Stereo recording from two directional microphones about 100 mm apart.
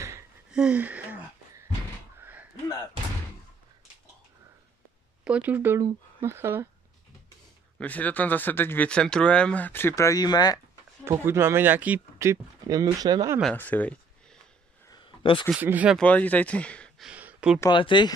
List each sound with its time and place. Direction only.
0.5 s gasp: 10° right (ahead or behind)
2.1 s a sound: 20° right (ahead or behind)
5.2 s speech: 15° right (ahead or behind)
7.8 s speech: 15° left (ahead or behind); by 10.6 s 45° left (ahead or behind)
11.1 s speech: 25° right (ahead or behind)
12.2 s speech: 35° right (ahead or behind)
13.6 s a sound: 15° left (ahead or behind)
14.9 s a sound: 55° left (ahead or behind)
15.6 s speech: 15° right (ahead or behind)
16.0 s speech: 15° left (ahead or behind)
17.0 s a sound: 15° right (ahead or behind)
17.6 s speech: 50° left (ahead or behind)